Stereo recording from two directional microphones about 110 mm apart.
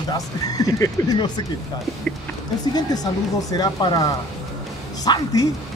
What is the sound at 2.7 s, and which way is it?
Speech, 35° left (ahead or behind).